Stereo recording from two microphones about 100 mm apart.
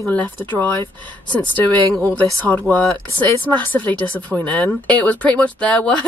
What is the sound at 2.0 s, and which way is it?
Speech, 15° left (ahead or behind).